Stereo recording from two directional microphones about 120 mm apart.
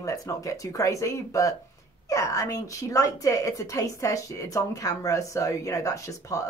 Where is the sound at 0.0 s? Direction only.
25° left (ahead or behind).